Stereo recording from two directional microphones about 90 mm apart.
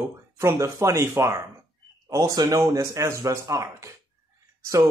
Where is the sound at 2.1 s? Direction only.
45° right (ahead or behind).